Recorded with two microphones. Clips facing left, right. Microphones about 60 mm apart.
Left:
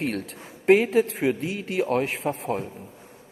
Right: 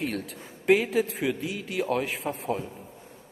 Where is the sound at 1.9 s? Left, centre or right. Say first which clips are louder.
Left 3 dB; left.